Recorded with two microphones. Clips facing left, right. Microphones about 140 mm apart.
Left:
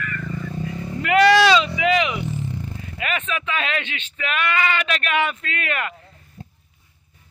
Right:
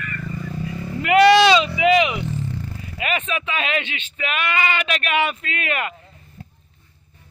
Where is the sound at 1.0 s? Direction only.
20° right (ahead or behind).